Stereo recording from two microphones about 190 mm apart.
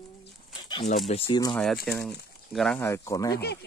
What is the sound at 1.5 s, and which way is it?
Speech, 5° left (ahead or behind).